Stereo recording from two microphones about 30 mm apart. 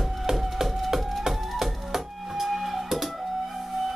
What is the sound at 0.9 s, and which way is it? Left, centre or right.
Music, centre.